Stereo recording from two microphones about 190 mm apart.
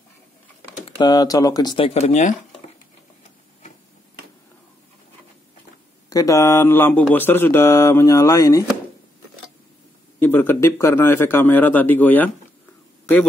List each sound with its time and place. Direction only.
0.8 s speech: 25° left (ahead or behind)
2.0 s speech: 35° left (ahead or behind)
6.0 s speech: 20° left (ahead or behind)
10.2 s speech: 10° left (ahead or behind)